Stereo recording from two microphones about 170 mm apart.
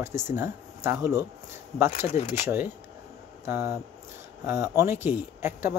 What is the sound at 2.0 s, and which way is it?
Speech, 40° left (ahead or behind).